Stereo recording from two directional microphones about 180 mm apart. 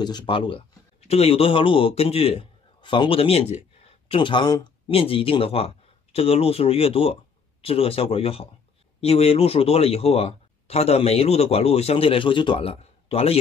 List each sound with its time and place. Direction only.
0.0 s speech: 25° left (ahead or behind)